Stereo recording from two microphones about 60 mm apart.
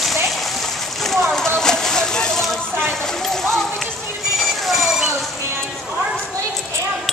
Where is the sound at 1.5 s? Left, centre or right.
Centre.